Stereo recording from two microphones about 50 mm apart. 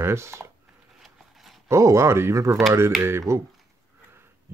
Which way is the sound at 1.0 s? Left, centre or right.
Centre.